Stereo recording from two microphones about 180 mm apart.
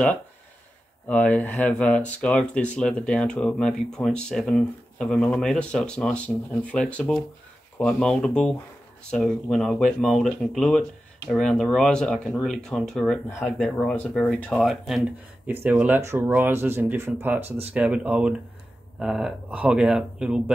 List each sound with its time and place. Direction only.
1.0 s speech: 10° left (ahead or behind); by 17.4 s 10° right (ahead or behind)
17.4 s speech: 35° right (ahead or behind)
17.7 s speech: 5° right (ahead or behind)